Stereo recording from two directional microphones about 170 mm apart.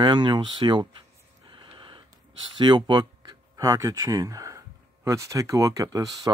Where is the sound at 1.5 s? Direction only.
30° right (ahead or behind).